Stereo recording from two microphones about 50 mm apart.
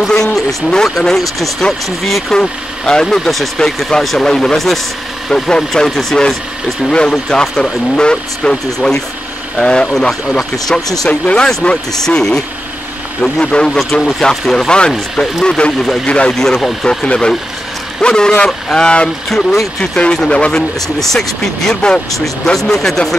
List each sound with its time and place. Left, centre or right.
0.2 s speech: centre
2.3 s speech: centre
4.0 s speech: centre
11.1 s speech: left
12.1 s speech: centre
13.7 s speech: centre
14.7 s speech: centre
16.3 s speech: centre
17.0 s speech: centre
19.2 s speech: centre
20.2 s speech: left
21.0 s speech: centre